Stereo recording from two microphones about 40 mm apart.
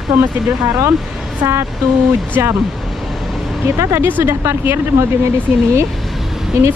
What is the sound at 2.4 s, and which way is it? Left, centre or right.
Speech, right.